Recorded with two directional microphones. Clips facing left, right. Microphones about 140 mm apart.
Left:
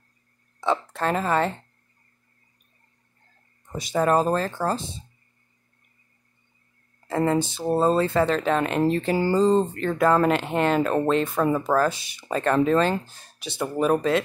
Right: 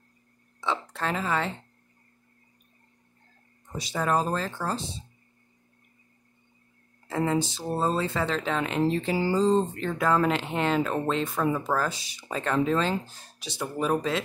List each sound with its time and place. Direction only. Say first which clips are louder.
0.6 s speech: left 5 dB; 50° left (ahead or behind)
3.7 s speech: left 5 dB; 50° left (ahead or behind)
7.1 s speech: left 4 dB; 50° left (ahead or behind)